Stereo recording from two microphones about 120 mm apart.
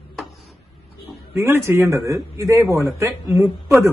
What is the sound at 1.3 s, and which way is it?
Speech, 20° right (ahead or behind).